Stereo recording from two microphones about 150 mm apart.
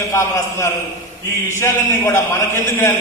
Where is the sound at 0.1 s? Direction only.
15° left (ahead or behind).